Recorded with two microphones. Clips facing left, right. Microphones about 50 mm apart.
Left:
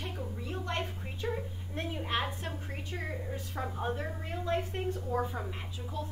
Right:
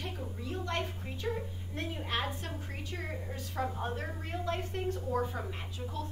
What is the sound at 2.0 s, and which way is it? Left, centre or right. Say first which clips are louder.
A woman's voice: left 2 dB; left.